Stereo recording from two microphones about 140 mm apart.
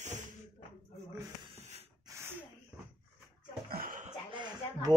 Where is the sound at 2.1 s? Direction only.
25° right (ahead or behind).